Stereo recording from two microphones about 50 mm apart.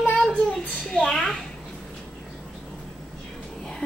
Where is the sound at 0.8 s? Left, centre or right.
Centre.